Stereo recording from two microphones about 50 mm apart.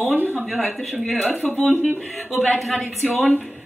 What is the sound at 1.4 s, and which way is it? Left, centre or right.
Speech, left.